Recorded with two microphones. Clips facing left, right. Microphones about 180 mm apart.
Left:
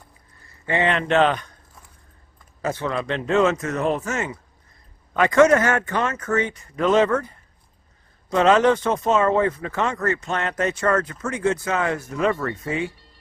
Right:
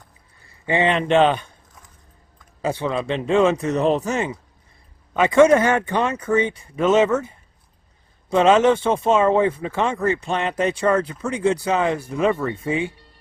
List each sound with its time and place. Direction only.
0.7 s speech: 20° right (ahead or behind)
2.6 s speech: 15° right (ahead or behind)
5.5 s speech: 10° right (ahead or behind)
7.0 s speech: 5° right (ahead or behind)
8.3 s speech: 25° right (ahead or behind)
9.1 s speech: 10° right (ahead or behind)